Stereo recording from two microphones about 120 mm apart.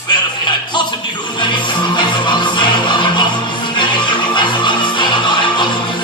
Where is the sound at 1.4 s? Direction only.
40° left (ahead or behind).